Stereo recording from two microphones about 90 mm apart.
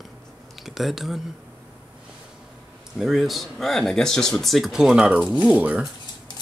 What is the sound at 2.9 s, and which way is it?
Speech, 5° right (ahead or behind).